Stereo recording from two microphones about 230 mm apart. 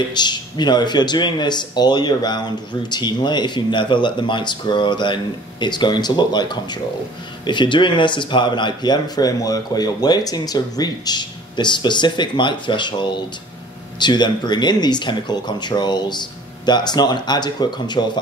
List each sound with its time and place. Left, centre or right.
0.1 s speech: centre